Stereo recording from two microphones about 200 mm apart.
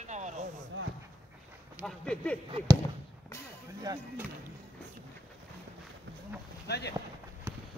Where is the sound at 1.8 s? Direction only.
5° left (ahead or behind).